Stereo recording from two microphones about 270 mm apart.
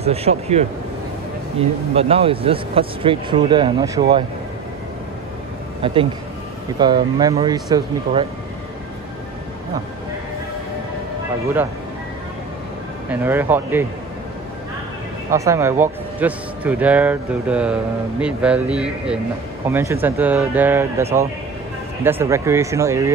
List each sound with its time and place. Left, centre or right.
0.0 s speech: right
2.0 s speech: right
6.8 s speech: centre
13.1 s speech: centre
15.3 s a man's voice: centre